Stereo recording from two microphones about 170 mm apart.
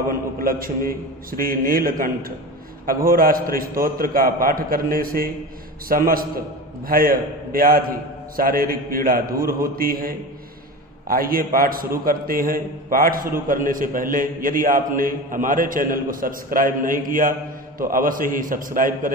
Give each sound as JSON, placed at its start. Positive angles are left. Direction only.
{"t": 0.4, "sound": "a man's voice", "side_deg": -60}